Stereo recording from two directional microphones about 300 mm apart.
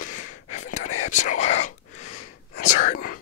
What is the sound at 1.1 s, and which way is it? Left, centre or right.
Speech, left.